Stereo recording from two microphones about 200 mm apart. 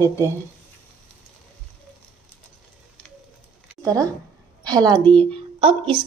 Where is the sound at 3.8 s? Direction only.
15° right (ahead or behind).